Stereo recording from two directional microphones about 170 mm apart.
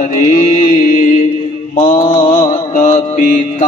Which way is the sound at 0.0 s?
50° left (ahead or behind).